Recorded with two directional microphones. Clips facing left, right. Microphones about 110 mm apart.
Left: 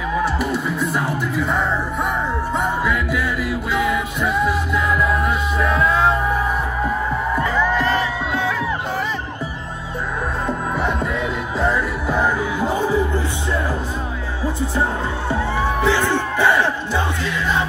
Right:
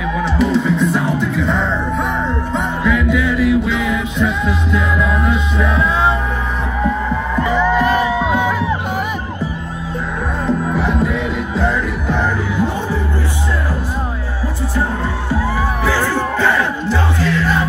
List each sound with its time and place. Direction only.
0.2 s music: 5° left (ahead or behind)
7.4 s music: 15° right (ahead or behind)
10.4 s music: centre (ahead or behind)
15.2 s crowd: 20° left (ahead or behind)
16.3 s a sound: 20° left (ahead or behind)